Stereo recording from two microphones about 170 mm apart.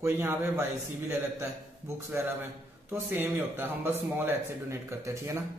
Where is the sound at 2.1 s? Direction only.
15° right (ahead or behind).